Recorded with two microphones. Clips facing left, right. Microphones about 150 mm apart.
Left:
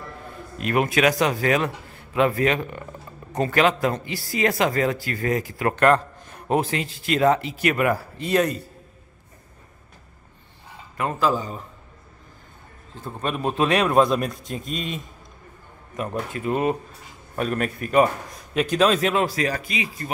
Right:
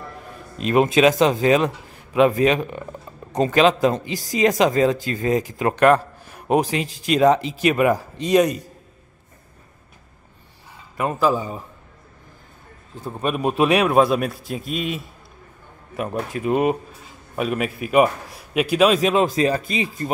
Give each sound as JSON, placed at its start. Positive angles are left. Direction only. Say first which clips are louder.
{"t": 0.6, "sound": "a man's voice", "louder": "right 5 dB", "side_deg": -20}
{"t": 11.0, "sound": "a man's voice", "louder": "right 3 dB", "side_deg": -10}
{"t": 12.9, "sound": "a man's voice", "louder": "right 4 dB", "side_deg": -15}
{"t": 16.0, "sound": "a man's voice", "louder": "right 3 dB", "side_deg": -15}